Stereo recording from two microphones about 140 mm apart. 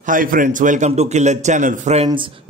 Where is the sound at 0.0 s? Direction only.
75° right (ahead or behind); by 2.0 s 60° right (ahead or behind).